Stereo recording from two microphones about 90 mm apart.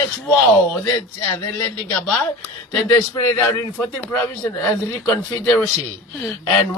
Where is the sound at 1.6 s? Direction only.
20° left (ahead or behind).